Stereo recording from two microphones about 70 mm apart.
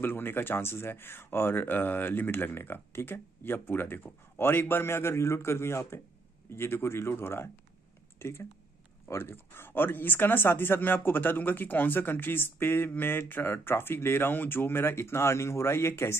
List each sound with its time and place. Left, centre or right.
0.0 s speech: left